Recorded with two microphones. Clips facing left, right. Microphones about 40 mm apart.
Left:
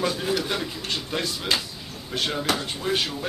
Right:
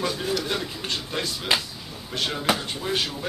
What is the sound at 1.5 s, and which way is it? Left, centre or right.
Speech, centre.